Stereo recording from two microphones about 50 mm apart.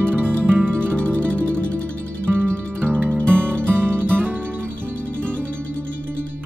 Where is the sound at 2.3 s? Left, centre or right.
Right.